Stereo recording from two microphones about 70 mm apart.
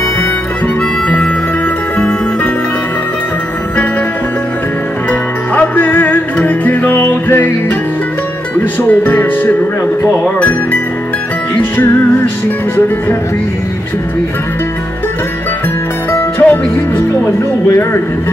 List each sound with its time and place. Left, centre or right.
1.0 s music: centre
5.5 s music: left
8.5 s speech: left
11.5 s speech: left
16.1 s music: left